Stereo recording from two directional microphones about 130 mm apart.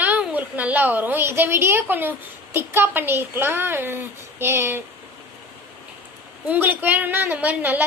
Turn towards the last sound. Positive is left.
turn(degrees=-15)  # may be behind; listen again after turning